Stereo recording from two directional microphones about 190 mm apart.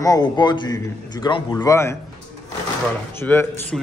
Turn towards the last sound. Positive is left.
turn(degrees=0)  # may be behind; listen again after turning